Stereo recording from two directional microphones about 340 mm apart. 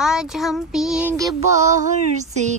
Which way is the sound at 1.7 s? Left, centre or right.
Right.